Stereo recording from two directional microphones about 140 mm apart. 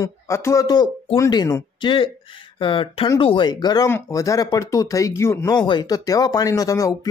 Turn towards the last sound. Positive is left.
turn(degrees=25)  # may be behind; listen again after turning